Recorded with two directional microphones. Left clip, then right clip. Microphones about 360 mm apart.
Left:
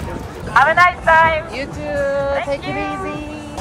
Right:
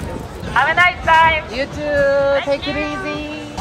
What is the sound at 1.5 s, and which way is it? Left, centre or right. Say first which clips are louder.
Speech: right 4 dB; right.